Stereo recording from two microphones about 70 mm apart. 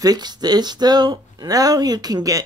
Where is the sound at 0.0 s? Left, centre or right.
Right.